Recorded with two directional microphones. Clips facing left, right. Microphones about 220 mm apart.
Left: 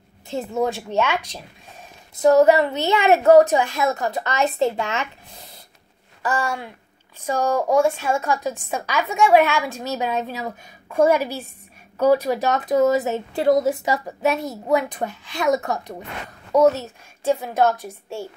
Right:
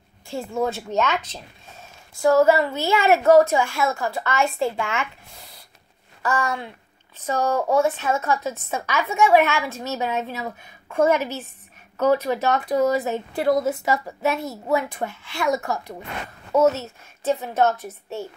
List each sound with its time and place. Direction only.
0.3 s a woman's voice: 20° left (ahead or behind)
4.8 s speech: 35° left (ahead or behind)
6.2 s a woman's voice: 15° left (ahead or behind)